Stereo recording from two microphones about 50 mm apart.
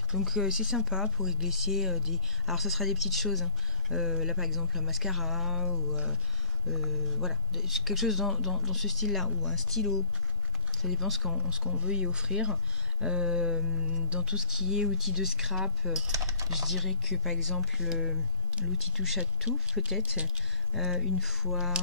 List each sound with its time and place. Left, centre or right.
0.2 s speech: centre
3.9 s speech: centre
11.3 s speech: centre
14.3 s speech: centre